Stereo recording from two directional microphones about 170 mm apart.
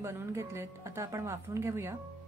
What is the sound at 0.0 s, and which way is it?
A woman's voice, 15° right (ahead or behind).